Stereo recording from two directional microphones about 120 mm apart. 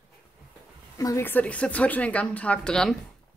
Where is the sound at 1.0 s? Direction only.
20° left (ahead or behind); by 2.9 s 5° left (ahead or behind).